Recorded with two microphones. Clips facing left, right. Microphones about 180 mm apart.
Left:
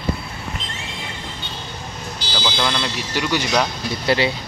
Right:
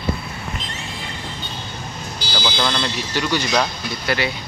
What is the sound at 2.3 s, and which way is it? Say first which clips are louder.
Speech: even; 5° left (ahead or behind).